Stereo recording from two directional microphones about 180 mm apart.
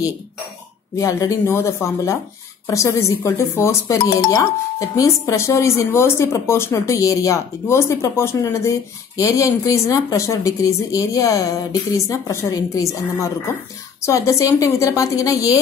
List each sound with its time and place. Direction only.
0.9 s speech: 20° left (ahead or behind)